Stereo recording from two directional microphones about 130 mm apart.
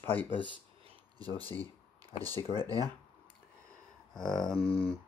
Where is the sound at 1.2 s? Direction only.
45° left (ahead or behind).